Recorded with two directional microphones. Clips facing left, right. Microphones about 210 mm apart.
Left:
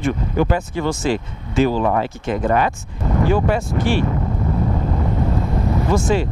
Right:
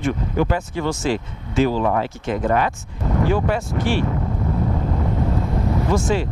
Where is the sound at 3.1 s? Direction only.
25° left (ahead or behind).